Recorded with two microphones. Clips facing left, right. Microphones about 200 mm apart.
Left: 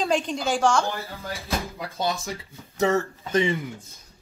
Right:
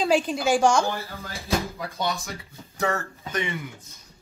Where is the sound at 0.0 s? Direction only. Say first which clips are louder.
Right 2 dB; 5° right (ahead or behind).